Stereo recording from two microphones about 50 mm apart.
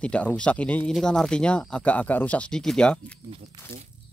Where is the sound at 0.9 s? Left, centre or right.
Centre.